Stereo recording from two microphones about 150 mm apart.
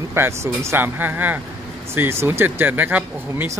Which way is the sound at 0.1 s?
15° right (ahead or behind).